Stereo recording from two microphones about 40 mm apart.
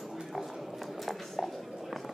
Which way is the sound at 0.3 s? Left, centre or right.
Centre.